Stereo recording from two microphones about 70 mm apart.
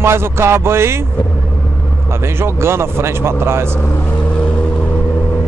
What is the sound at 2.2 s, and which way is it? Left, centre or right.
Speech, right.